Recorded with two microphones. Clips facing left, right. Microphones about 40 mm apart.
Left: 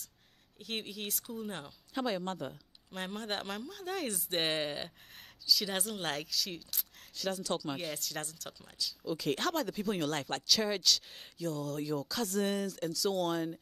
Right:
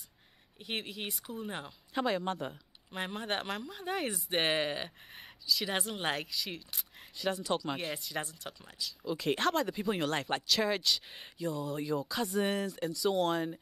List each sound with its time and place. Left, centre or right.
0.6 s speech: centre